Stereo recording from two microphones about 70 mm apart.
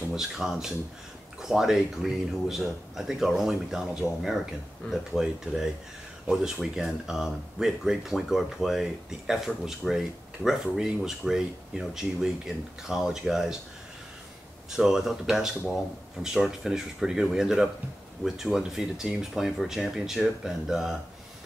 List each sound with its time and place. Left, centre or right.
0.1 s speech: centre
14.8 s speech: centre